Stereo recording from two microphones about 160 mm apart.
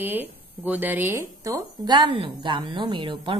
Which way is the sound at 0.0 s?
10° right (ahead or behind).